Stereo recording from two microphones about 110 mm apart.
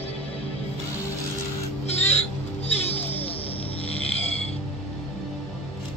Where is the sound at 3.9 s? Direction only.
65° left (ahead or behind).